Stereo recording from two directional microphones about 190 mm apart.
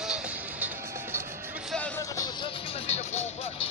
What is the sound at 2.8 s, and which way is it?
Music, 35° left (ahead or behind).